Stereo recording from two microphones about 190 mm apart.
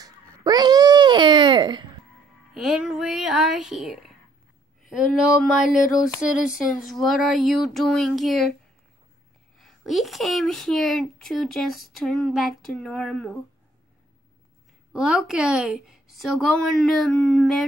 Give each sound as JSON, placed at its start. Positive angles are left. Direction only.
{"t": 0.0, "sound": "babbling", "side_deg": -20}
{"t": 2.5, "sound": "speech", "side_deg": 0}
{"t": 9.6, "sound": "speech", "side_deg": 0}
{"t": 14.9, "sound": "speech", "side_deg": -5}